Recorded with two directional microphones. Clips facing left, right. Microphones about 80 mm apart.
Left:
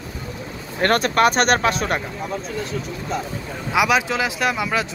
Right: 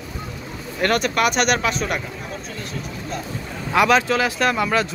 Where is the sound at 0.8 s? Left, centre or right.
Left.